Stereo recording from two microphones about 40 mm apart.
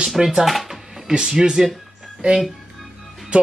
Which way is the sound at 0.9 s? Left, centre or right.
Centre.